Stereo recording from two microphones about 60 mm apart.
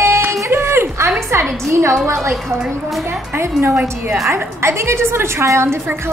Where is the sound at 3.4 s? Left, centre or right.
Right.